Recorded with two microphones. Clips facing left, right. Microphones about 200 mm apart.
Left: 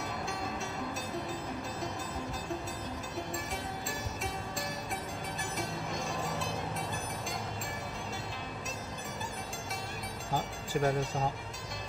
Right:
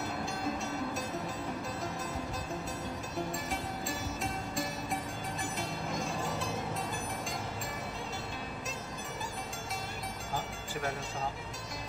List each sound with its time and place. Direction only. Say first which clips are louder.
5.6 s music: left 1 dB; centre (ahead or behind)
10.3 s music: left 6 dB; 35° left (ahead or behind)